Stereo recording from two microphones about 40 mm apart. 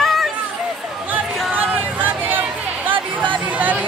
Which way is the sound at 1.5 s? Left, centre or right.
Right.